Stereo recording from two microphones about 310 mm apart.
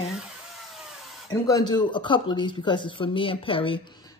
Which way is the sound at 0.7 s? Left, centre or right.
Centre.